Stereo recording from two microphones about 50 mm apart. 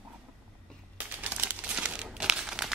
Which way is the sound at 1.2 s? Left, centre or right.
Right.